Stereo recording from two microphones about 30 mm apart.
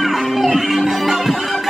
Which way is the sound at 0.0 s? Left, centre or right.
Centre.